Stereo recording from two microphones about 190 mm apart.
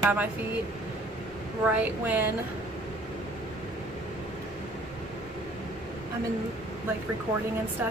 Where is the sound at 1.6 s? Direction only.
5° right (ahead or behind).